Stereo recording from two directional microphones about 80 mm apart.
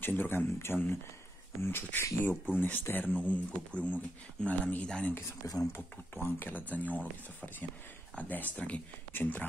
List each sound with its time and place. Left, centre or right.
0.0 s speech: left
5.4 s speech: left
5.8 s speech: left